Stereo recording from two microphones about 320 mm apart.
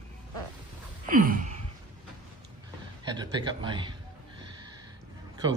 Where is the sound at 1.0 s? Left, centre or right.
Right.